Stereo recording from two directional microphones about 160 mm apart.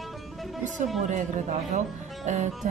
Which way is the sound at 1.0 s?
50° right (ahead or behind).